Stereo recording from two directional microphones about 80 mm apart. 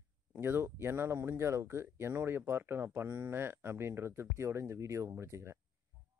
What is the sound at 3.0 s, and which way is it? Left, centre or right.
Speech, right.